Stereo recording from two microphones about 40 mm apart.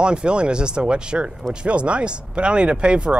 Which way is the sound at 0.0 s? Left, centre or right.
Right.